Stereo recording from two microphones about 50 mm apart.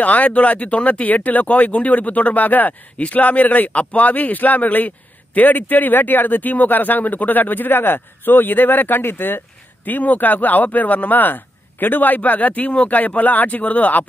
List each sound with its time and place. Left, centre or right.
0.0 s speech: left